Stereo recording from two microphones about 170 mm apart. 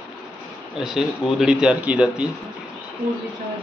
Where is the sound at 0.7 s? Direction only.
5° right (ahead or behind).